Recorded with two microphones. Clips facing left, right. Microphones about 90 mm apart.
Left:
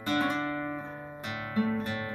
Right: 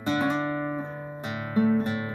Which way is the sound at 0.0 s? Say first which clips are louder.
Right 3 dB; 20° right (ahead or behind).